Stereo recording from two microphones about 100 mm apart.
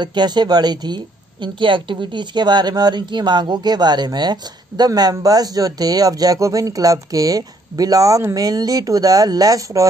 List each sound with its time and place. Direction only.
0.0 s a woman's voice: 45° right (ahead or behind)